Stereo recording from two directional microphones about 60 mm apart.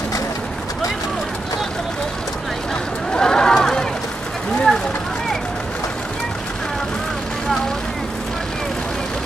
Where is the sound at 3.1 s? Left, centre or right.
Centre.